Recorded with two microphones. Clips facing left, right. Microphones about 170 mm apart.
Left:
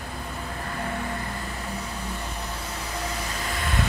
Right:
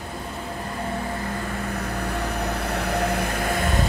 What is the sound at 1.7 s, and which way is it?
Vehicle, 65° right (ahead or behind).